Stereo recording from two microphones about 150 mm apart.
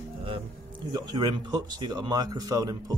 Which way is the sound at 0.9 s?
25° right (ahead or behind).